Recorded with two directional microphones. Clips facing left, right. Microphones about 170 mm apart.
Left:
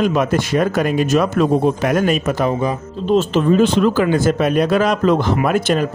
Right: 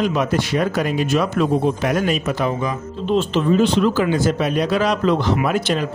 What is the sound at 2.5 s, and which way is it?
Speech, 35° left (ahead or behind).